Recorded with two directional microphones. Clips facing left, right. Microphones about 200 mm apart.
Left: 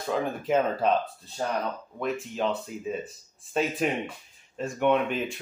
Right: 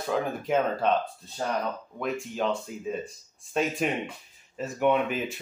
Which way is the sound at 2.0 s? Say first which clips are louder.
Left 1 dB; centre (ahead or behind).